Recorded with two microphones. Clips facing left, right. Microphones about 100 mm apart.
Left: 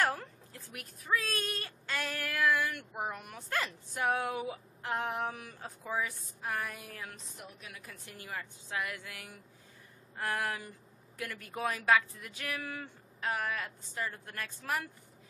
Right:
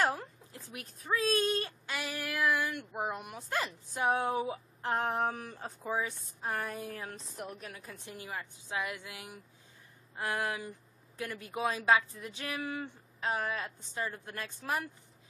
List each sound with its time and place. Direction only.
0.0 s a sound: 20° right (ahead or behind)
0.7 s a woman's voice: 25° right (ahead or behind)
1.9 s a woman's voice: 15° right (ahead or behind); by 7.2 s 30° right (ahead or behind)
7.3 s a woman's voice: 40° right (ahead or behind)
7.8 s a woman's voice: 25° right (ahead or behind)